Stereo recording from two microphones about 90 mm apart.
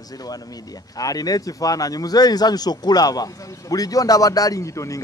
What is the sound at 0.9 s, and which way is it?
A man's voice, 45° left (ahead or behind).